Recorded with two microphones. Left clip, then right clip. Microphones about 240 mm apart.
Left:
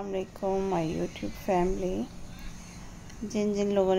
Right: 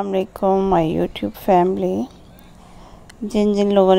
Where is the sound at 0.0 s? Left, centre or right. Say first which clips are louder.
Right 12 dB; right.